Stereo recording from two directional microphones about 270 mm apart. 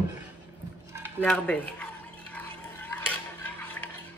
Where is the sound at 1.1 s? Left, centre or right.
Centre.